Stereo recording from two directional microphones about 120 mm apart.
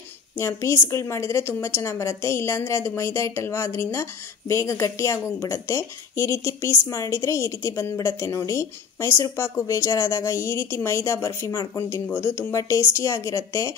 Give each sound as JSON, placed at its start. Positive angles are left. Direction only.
{"t": 0.4, "sound": "a woman's voice", "side_deg": 25}